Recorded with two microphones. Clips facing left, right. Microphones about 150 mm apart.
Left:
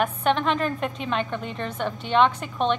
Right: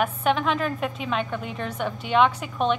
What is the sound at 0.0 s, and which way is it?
A woman's voice, 5° right (ahead or behind).